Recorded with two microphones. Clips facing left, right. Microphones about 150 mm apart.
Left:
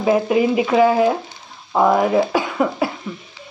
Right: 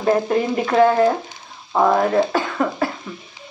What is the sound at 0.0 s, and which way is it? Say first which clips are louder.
Speech: left 2 dB; 10° left (ahead or behind).